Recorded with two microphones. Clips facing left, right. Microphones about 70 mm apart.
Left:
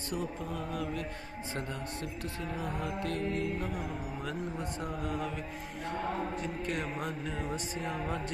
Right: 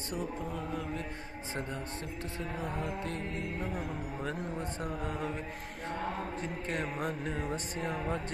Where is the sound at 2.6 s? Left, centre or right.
Right.